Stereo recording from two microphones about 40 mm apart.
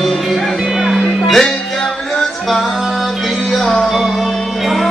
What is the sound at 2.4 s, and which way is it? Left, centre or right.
Music, centre.